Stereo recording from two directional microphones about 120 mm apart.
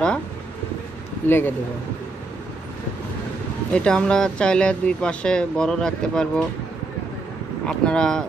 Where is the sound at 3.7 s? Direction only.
10° left (ahead or behind).